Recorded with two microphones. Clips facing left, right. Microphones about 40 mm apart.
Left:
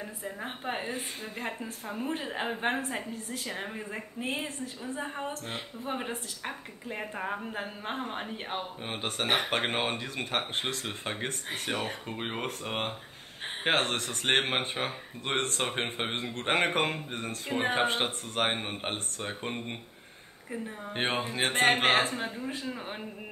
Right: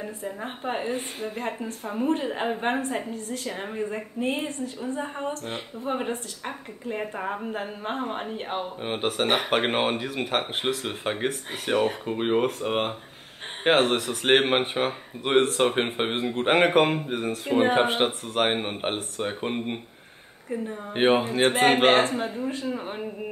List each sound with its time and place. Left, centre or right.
0.2 s a woman's voice: centre
8.8 s speech: centre
20.4 s speech: centre
20.9 s speech: centre
21.4 s a woman's voice: centre